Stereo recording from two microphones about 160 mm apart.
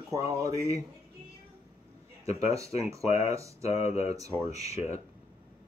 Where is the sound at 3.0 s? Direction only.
40° left (ahead or behind).